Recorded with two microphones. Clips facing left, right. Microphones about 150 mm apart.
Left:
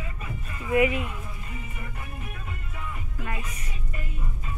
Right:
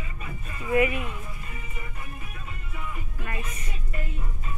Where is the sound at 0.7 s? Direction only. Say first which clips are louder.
Left 1 dB; 15° left (ahead or behind).